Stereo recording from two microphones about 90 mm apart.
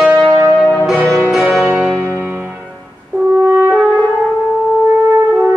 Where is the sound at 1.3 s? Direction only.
Centre (ahead or behind).